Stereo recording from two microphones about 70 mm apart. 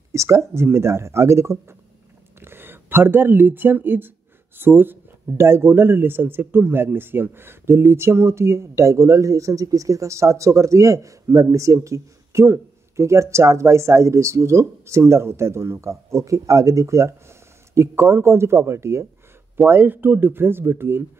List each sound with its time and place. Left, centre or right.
0.1 s a man's voice: right